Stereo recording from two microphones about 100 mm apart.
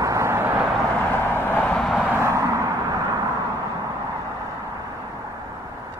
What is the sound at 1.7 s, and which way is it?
Vehicle, centre (ahead or behind).